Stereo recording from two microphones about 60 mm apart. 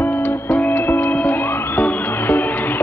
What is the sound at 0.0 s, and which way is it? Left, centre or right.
Music, left.